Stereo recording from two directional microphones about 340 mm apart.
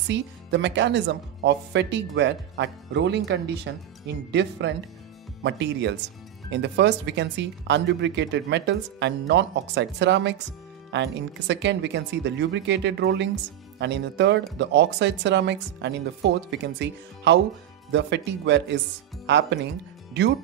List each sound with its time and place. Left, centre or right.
0.1 s speech: right